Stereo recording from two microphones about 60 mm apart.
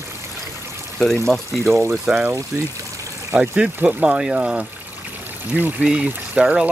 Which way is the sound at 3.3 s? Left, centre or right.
Right.